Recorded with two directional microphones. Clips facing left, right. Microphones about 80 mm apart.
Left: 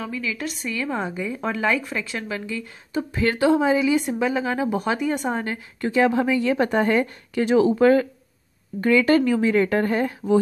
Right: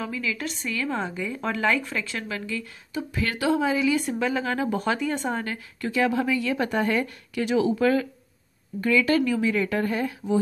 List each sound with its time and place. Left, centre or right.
0.0 s a woman's voice: centre
2.9 s speech: left